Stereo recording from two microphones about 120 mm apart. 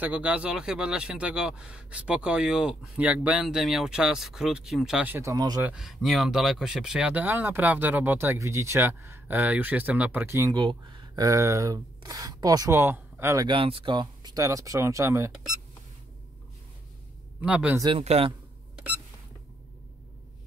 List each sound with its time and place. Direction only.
0.0 s speech: 10° right (ahead or behind)
5.2 s speech: 30° right (ahead or behind)
5.8 s speech: 5° right (ahead or behind); by 10.5 s 20° right (ahead or behind)
10.5 s speech: 40° right (ahead or behind)
11.2 s speech: 25° right (ahead or behind)
13.5 s speech: 50° right (ahead or behind); by 15.3 s 25° right (ahead or behind)
17.4 s speech: 10° right (ahead or behind)
18.0 s speech: 60° right (ahead or behind)